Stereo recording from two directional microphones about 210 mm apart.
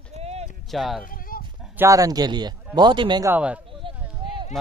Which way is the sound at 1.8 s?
15° right (ahead or behind).